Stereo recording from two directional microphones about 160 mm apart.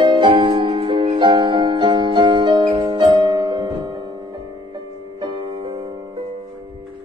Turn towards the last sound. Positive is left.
turn(degrees=-30)  # may be behind; listen again after turning